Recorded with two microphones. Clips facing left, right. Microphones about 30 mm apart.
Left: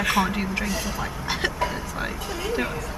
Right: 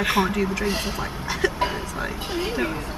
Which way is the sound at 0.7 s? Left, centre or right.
Right.